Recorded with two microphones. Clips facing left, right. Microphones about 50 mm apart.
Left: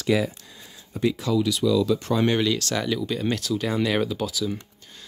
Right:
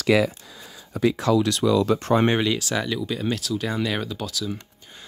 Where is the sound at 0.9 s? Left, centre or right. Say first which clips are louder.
Right 3 dB; right.